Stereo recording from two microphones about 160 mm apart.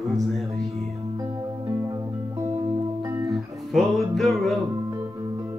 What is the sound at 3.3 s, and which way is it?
Music, centre (ahead or behind).